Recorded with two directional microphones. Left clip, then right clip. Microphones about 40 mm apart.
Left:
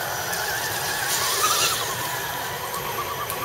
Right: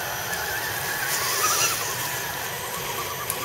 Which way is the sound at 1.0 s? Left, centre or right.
Left.